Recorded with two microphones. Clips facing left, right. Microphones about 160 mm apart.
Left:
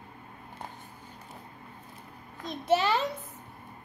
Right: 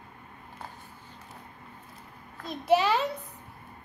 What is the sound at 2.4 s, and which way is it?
Speech, centre (ahead or behind).